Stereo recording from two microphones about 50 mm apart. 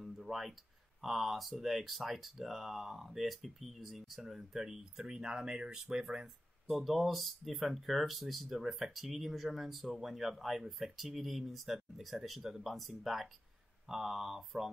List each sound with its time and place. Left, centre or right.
0.0 s music: centre
1.0 s speech: centre
6.7 s speech: centre